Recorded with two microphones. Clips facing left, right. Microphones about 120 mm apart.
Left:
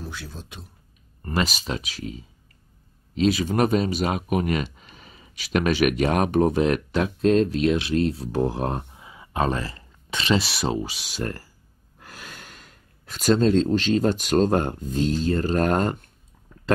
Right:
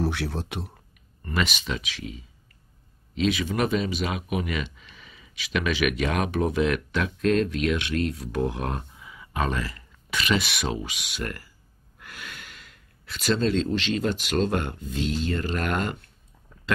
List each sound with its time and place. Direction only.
0.0 s speech: 65° right (ahead or behind)
1.2 s speech: 35° left (ahead or behind)